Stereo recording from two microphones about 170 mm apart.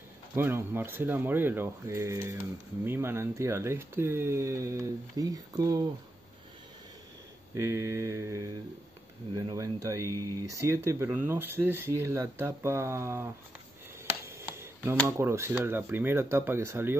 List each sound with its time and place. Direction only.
0.4 s speech: 15° right (ahead or behind)
7.6 s speech: 15° right (ahead or behind)
14.2 s a sound: 15° right (ahead or behind)
15.0 s speech: 15° right (ahead or behind)